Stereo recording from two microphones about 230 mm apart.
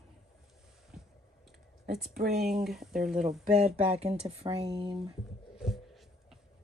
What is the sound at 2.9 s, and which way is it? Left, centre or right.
Speech, right.